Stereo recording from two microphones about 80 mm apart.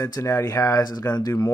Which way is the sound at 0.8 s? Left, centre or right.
Left.